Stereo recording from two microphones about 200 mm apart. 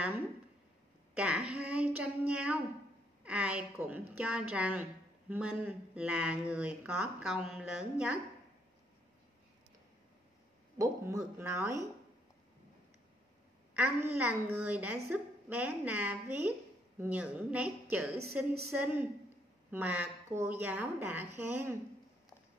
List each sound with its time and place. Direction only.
1.1 s a woman's voice: 5° right (ahead or behind)
10.8 s a woman's voice: 15° right (ahead or behind)
13.7 s a woman's voice: 10° right (ahead or behind)